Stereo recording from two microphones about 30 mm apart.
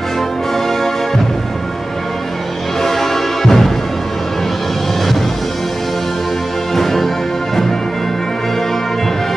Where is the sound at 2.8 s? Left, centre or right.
Centre.